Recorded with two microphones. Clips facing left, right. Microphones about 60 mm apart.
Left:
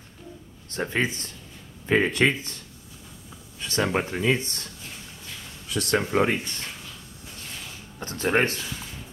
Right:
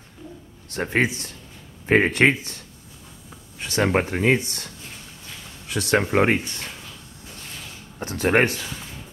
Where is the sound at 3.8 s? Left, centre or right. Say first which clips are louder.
Right 4 dB; right.